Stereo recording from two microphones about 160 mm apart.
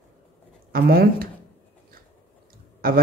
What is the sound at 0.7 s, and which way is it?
Speech, 70° right (ahead or behind).